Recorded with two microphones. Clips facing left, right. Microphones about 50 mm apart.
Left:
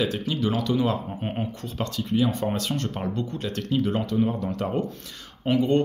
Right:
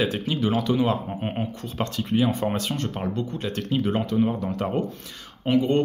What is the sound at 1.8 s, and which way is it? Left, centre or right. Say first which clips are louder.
Speech: right 1 dB; right.